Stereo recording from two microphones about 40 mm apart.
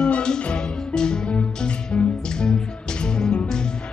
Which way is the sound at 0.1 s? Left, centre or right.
Left.